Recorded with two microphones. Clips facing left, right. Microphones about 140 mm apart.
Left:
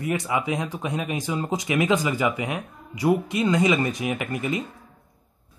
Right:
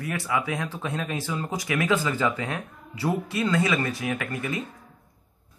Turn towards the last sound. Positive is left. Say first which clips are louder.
# left 3 dB
turn(degrees=20)  # may be behind; listen again after turning